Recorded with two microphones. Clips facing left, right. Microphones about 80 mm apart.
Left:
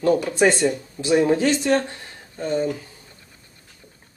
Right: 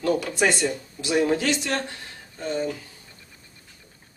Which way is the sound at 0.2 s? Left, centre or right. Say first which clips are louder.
Left 5 dB; left.